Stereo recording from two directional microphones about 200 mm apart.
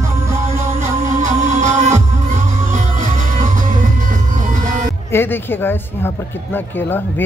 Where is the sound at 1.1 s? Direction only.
35° right (ahead or behind).